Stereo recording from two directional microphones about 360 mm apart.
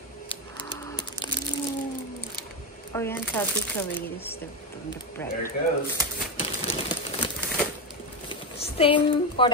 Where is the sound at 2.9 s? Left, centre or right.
Centre.